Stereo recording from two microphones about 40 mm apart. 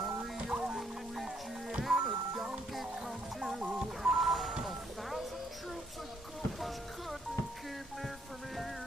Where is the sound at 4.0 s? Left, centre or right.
Centre.